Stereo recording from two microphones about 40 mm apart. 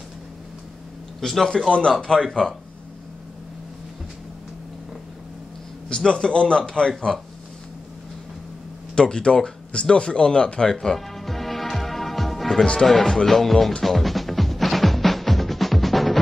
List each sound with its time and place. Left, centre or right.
1.2 s speech: centre
1.7 s a man's voice: left
5.9 s a man's voice: left
8.9 s a sound: left; by 12.6 s centre
13.0 s speech: centre
13.8 s music: centre